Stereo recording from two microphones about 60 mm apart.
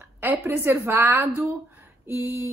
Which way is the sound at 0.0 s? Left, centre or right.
Right.